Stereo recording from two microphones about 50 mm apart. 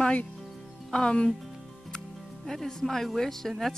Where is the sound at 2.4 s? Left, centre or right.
Centre.